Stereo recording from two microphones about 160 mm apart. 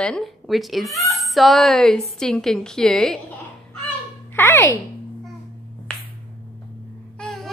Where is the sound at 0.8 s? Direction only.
20° left (ahead or behind).